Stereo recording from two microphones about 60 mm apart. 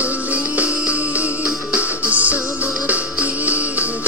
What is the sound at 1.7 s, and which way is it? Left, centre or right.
Music, right.